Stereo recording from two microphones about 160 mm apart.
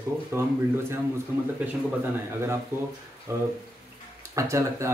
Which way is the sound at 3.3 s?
15° right (ahead or behind).